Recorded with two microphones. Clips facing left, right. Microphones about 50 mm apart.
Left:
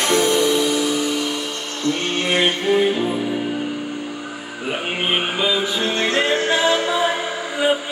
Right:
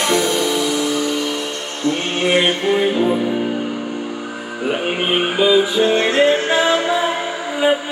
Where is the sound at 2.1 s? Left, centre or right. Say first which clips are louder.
Right 4 dB; centre.